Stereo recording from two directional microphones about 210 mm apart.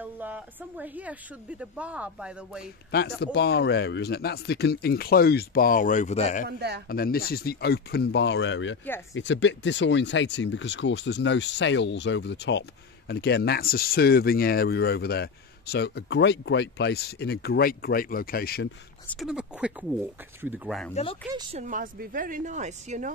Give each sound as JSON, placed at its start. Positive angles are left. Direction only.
{"t": 0.0, "sound": "a woman's voice", "side_deg": -10}
{"t": 3.3, "sound": "speech", "side_deg": 55}
{"t": 6.9, "sound": "speech", "side_deg": 45}
{"t": 19.0, "sound": "speech", "side_deg": 0}
{"t": 20.9, "sound": "speech", "side_deg": 25}
{"t": 21.5, "sound": "a woman's voice", "side_deg": -40}